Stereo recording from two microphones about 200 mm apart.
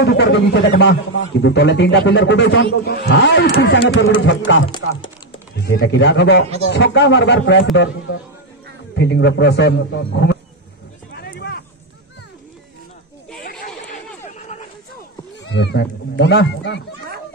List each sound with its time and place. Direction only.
0.0 s a man's voice: 65° left (ahead or behind)
5.6 s a man's voice: 65° left (ahead or behind)
11.1 s a sound: 55° left (ahead or behind)
14.2 s dog: 35° left (ahead or behind)
15.4 s a man's voice: 60° left (ahead or behind)